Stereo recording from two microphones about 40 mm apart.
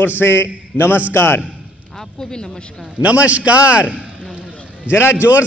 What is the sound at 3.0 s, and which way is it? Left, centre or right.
A man's voice, right.